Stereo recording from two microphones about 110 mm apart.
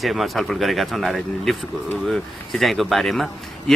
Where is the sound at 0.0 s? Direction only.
Centre (ahead or behind).